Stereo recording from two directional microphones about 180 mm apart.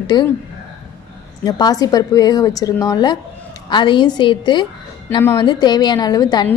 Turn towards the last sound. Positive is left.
turn(degrees=20)  # may be behind; listen again after turning